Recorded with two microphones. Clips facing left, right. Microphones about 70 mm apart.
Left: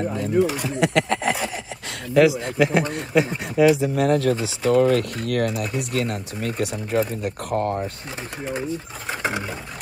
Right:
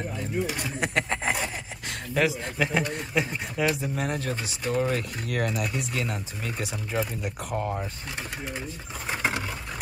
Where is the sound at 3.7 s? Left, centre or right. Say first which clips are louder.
Left 10 dB; left.